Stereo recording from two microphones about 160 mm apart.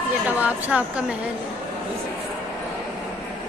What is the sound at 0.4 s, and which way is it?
Speech, 10° right (ahead or behind).